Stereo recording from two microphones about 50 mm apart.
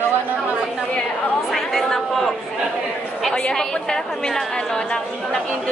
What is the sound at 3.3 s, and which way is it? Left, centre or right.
A woman's voice, centre.